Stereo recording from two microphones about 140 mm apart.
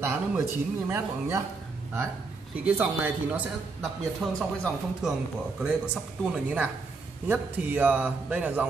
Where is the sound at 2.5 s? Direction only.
10° right (ahead or behind).